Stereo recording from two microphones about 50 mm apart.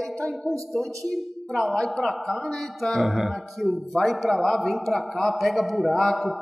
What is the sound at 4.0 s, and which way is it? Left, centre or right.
A man's voice, centre.